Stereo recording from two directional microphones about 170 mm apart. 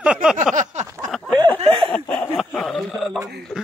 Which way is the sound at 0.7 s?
45° right (ahead or behind).